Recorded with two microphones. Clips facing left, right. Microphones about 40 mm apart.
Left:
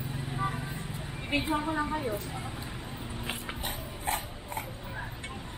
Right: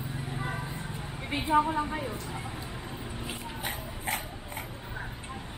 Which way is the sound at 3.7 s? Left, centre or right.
Right.